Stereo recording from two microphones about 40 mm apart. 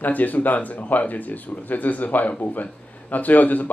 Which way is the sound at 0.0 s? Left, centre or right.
Left.